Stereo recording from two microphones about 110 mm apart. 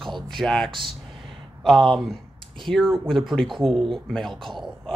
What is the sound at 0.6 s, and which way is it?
Speech, 50° right (ahead or behind).